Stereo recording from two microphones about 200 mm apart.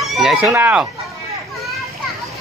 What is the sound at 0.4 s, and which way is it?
Speech, 10° right (ahead or behind).